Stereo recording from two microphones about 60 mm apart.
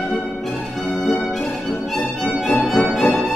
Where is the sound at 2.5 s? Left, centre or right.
Left.